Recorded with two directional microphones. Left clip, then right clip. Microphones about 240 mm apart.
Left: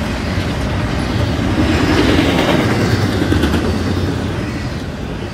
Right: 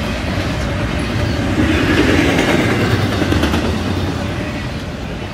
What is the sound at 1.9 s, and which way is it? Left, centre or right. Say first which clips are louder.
Vehicle: even; left.